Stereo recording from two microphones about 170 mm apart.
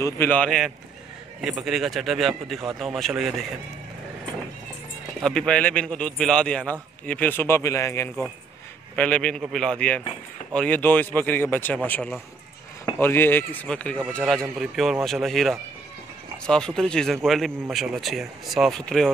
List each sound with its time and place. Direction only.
0.0 s speech: 10° left (ahead or behind)
5.2 s speech: 5° left (ahead or behind)
8.9 s speech: 5° left (ahead or behind)